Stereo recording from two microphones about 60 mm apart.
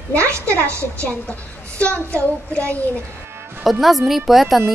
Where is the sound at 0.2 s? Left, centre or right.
Right.